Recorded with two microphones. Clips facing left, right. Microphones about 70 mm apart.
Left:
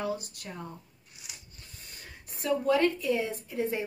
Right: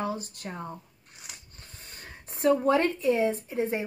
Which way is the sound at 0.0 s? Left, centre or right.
Right.